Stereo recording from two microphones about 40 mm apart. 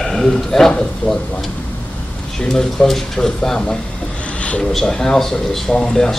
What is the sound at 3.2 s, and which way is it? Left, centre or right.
Speech, centre.